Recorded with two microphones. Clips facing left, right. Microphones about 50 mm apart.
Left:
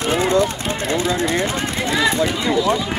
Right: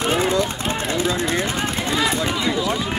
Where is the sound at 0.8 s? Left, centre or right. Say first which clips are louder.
Left 3 dB; left.